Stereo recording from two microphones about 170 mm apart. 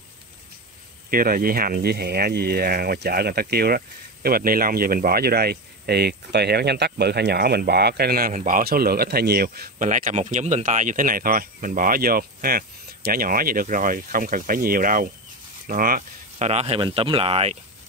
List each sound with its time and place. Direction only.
1.1 s speech: 60° right (ahead or behind)
15.6 s a sound: 55° right (ahead or behind)
16.4 s speech: 40° right (ahead or behind)